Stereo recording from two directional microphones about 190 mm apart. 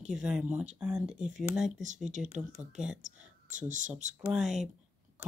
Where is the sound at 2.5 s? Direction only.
5° right (ahead or behind).